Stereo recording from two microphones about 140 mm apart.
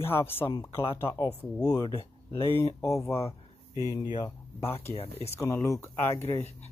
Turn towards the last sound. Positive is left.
turn(degrees=20)  # may be behind; listen again after turning